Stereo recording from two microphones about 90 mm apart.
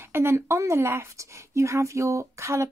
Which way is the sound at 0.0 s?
25° right (ahead or behind).